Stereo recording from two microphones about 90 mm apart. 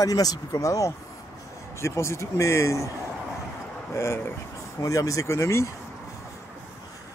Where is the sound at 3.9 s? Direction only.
30° left (ahead or behind).